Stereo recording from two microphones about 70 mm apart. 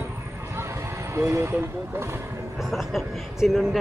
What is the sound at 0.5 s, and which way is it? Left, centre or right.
Vehicle, right.